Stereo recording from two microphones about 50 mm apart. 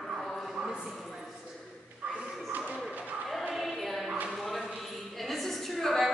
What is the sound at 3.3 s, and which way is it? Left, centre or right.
Choir, centre.